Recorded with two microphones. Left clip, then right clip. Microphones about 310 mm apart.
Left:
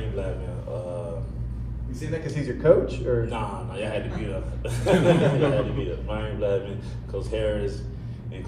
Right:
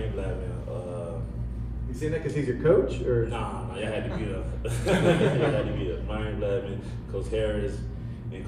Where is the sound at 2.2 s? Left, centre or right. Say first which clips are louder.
Left 5 dB; centre.